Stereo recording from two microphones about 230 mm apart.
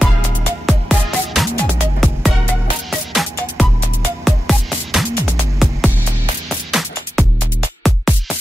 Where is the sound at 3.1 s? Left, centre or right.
Centre.